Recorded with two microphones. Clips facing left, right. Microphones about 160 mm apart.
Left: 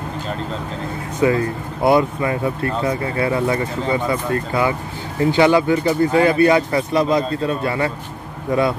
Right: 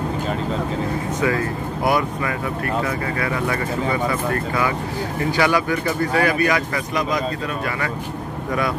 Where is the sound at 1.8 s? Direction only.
25° left (ahead or behind).